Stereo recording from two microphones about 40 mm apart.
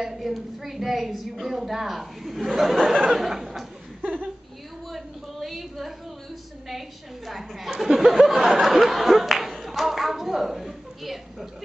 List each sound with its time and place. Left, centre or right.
0.0 s a woman's voice: centre
3.1 s chuckle: centre
4.0 s chuckle: right
4.9 s a woman's voice: centre
7.2 s speech: centre